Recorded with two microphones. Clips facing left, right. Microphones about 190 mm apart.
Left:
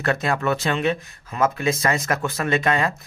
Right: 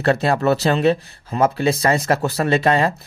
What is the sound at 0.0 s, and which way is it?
Speech, 30° right (ahead or behind).